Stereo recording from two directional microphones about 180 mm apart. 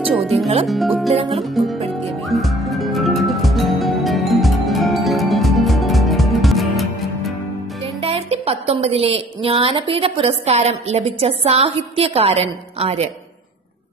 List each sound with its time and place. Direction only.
0.7 s speech: centre (ahead or behind)
1.1 s speech: 30° right (ahead or behind)
1.4 s speech: centre (ahead or behind)
2.2 s music: centre (ahead or behind)
7.8 s speech: 35° right (ahead or behind)